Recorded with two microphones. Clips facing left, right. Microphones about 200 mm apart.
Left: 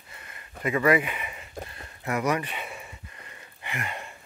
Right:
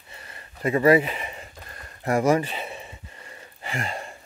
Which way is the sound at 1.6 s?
45° right (ahead or behind).